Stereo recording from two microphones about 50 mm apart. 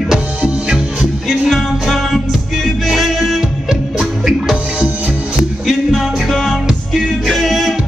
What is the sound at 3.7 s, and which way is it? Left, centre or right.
Music, centre.